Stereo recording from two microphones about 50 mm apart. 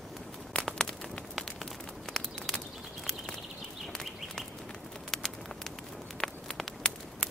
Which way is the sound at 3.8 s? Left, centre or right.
Centre.